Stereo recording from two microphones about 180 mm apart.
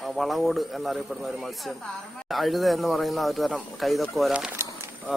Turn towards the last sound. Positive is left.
turn(degrees=0)  # may be behind; listen again after turning